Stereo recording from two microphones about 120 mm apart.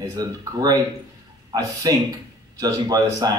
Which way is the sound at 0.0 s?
30° right (ahead or behind).